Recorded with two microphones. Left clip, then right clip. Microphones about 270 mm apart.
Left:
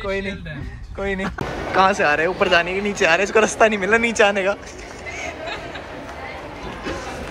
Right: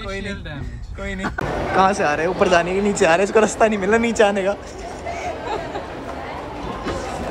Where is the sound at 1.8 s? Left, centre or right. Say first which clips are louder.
Left 1 dB; centre.